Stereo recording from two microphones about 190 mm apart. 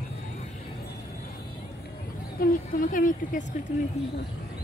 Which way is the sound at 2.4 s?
50° left (ahead or behind).